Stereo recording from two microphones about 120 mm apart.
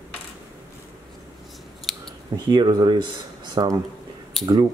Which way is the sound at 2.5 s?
40° right (ahead or behind).